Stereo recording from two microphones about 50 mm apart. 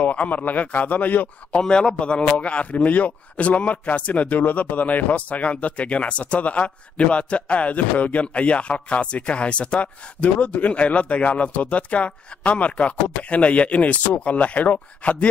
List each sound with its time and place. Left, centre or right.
0.0 s a man's voice: left
1.6 s a man's voice: centre; by 15.2 s left